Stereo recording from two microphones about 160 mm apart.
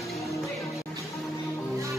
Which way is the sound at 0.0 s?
Centre (ahead or behind).